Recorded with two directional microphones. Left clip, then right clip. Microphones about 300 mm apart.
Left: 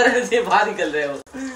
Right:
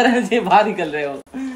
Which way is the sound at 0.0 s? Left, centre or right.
Right.